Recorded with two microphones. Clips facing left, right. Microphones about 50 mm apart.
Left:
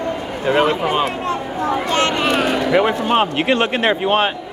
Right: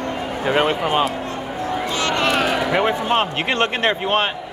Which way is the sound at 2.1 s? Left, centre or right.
Centre.